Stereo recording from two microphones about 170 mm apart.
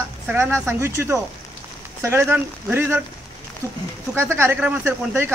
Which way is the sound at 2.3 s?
15° right (ahead or behind).